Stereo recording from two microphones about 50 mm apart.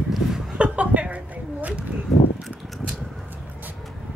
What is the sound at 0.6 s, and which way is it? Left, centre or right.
Speech, right.